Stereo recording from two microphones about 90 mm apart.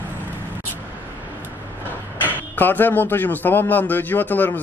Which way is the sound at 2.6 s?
20° left (ahead or behind).